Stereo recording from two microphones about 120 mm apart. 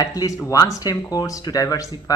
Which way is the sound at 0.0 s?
30° left (ahead or behind).